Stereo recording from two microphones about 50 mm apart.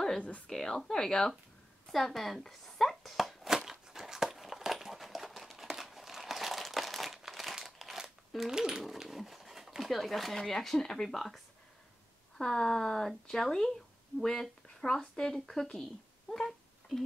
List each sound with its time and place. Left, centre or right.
0.5 s speech: centre
1.9 s a sound: centre
8.8 s speech: centre
12.4 s speech: centre